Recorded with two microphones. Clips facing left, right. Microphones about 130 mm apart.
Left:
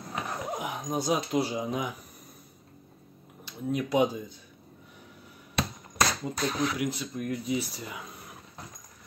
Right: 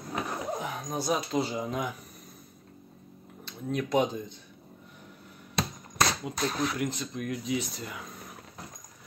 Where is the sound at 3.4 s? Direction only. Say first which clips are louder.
Left 1 dB; 10° left (ahead or behind).